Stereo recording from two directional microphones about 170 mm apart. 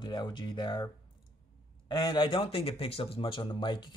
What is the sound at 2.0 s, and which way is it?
Speech, 25° left (ahead or behind).